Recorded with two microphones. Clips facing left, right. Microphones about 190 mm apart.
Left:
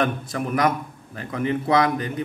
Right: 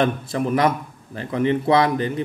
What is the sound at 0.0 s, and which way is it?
A man's voice, 30° right (ahead or behind).